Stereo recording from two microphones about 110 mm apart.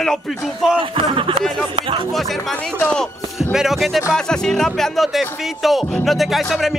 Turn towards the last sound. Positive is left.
turn(degrees=0)  # may be behind; listen again after turning